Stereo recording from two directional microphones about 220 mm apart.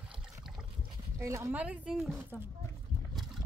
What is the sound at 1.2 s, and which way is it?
A woman's voice, 15° right (ahead or behind).